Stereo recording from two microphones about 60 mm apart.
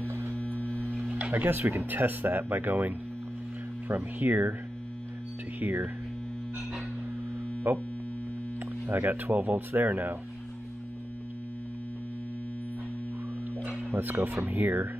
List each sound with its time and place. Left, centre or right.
0.0 s mains hum: right
0.3 s mains hum: left
0.9 s music: right
1.8 s speech: right
3.9 s speech: right
5.6 s speech: right
7.7 s speech: right
8.8 s speech: right
13.9 s speech: right